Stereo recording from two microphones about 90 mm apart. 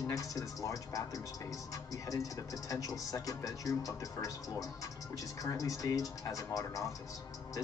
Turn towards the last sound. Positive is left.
turn(degrees=40)  # may be behind; listen again after turning